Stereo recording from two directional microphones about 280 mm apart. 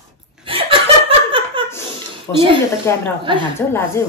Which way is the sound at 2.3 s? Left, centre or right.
Centre.